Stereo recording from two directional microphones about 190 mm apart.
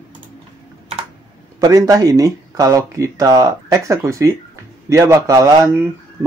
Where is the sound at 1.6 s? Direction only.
20° right (ahead or behind).